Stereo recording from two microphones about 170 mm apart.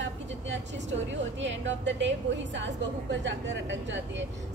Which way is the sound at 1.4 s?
90° right.